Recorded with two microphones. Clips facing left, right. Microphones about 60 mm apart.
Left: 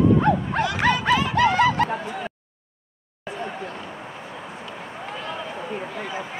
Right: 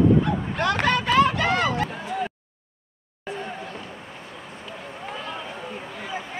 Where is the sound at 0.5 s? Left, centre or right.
Right.